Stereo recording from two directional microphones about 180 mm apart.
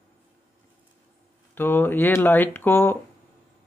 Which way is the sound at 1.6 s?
10° left (ahead or behind).